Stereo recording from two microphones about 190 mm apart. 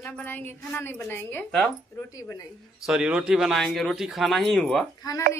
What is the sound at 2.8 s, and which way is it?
A man's voice, 5° right (ahead or behind).